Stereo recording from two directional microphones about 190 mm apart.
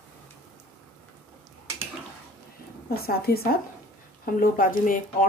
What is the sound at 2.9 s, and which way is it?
Speech, 55° left (ahead or behind).